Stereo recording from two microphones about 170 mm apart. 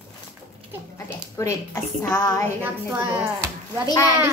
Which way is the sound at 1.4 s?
20° left (ahead or behind).